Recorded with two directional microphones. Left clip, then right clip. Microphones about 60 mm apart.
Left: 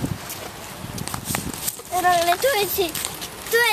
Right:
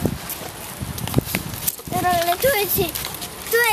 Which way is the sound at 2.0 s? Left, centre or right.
Centre.